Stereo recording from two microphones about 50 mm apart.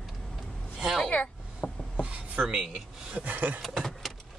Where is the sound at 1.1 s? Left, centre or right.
Left.